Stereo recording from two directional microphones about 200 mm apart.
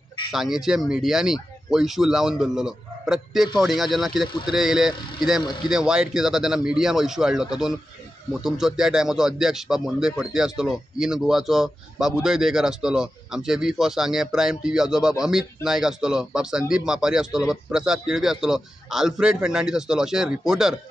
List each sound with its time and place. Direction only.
0.3 s speech: centre (ahead or behind)
5.4 s speech: 20° left (ahead or behind)
5.7 s speech: 5° right (ahead or behind)